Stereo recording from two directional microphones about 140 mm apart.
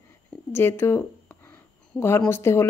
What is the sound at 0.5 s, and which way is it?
Speech, 15° left (ahead or behind).